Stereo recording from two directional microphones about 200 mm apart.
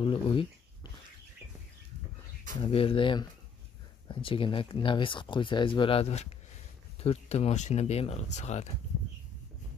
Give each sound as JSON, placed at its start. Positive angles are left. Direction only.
{"t": 0.0, "sound": "speech", "side_deg": 25}
{"t": 2.6, "sound": "speech", "side_deg": 25}